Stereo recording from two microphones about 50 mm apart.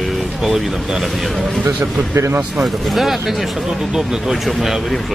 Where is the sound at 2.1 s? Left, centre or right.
Right.